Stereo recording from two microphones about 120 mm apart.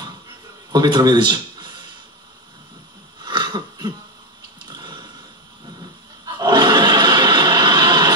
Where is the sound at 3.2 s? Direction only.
35° right (ahead or behind).